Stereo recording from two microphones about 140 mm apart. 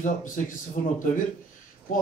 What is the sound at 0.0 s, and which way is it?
Speech, 70° left (ahead or behind).